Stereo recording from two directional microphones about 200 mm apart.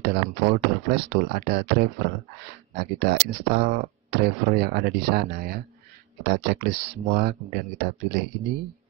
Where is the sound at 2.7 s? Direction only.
55° right (ahead or behind).